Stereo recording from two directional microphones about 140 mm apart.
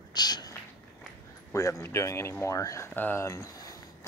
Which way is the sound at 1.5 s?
20° left (ahead or behind).